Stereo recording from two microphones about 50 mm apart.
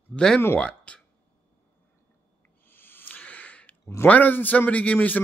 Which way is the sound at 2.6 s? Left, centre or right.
Left.